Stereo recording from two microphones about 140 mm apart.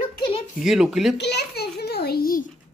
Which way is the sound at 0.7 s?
5° right (ahead or behind).